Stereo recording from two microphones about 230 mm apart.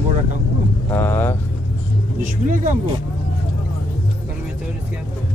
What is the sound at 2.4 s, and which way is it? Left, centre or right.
Speech, right.